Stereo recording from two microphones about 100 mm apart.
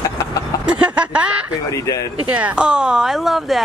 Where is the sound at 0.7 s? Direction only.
10° right (ahead or behind).